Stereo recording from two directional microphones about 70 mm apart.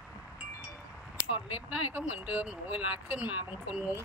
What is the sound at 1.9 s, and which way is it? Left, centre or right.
Speech, centre.